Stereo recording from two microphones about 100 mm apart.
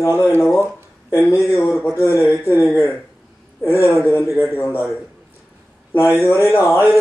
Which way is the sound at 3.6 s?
25° left (ahead or behind).